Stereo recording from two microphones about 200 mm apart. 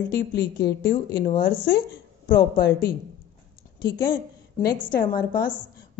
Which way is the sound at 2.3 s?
50° left (ahead or behind).